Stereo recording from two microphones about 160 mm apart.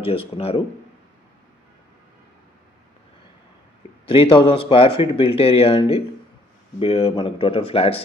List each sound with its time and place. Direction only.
0.0 s speech: 35° left (ahead or behind)
4.1 s speech: 35° left (ahead or behind)